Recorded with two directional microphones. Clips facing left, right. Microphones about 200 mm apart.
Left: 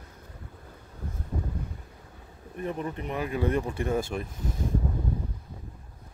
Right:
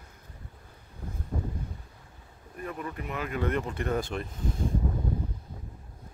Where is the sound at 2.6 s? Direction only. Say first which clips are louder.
Left 4 dB; 25° left (ahead or behind); by 4.3 s 10° left (ahead or behind).